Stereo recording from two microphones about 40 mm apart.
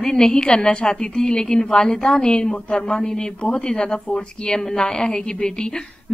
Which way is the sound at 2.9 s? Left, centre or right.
Left.